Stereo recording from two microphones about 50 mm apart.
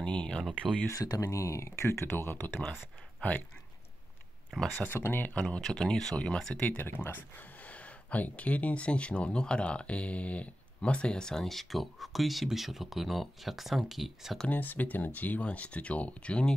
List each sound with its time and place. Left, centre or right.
0.0 s speech: left
0.8 s speech: left
3.2 s speech: left
4.8 s speech: left
5.3 s speech: left
5.6 s speech: centre
6.8 s speech: left; by 14.4 s centre
14.5 s speech: left